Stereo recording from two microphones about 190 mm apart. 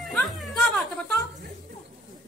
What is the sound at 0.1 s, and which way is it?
Music, centre (ahead or behind).